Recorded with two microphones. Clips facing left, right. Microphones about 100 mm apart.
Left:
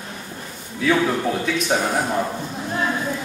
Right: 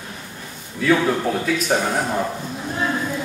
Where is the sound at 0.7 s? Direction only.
Centre (ahead or behind).